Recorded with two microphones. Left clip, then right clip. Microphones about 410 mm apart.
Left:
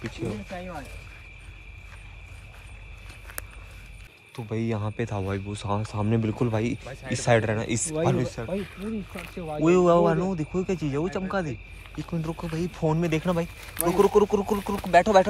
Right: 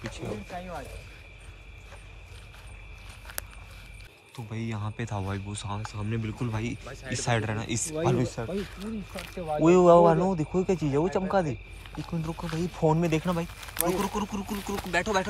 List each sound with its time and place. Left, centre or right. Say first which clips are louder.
0.0 s speech: left 3 dB; centre
4.5 s speech: left 7 dB; centre
12.1 s speech: left 2 dB; centre